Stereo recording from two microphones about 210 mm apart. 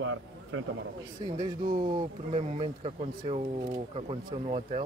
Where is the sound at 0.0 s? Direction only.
75° right (ahead or behind).